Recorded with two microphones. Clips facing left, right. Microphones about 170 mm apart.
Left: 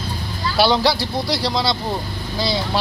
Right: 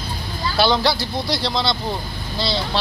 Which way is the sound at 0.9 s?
35° left (ahead or behind).